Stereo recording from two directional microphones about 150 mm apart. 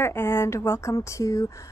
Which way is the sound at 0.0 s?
15° left (ahead or behind).